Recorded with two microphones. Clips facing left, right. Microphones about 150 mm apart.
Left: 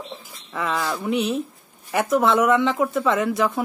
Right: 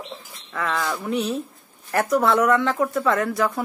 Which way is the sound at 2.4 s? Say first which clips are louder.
Left 1 dB; 20° left (ahead or behind).